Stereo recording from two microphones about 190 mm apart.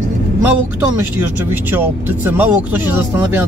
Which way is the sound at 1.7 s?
10° right (ahead or behind).